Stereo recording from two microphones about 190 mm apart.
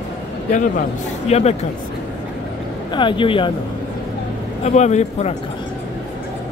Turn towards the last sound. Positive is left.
turn(degrees=35)  # may be behind; listen again after turning